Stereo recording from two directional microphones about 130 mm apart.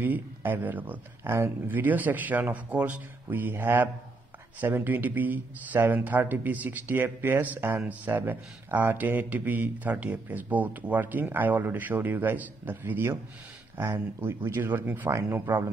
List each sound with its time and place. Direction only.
0.0 s speech: 15° right (ahead or behind)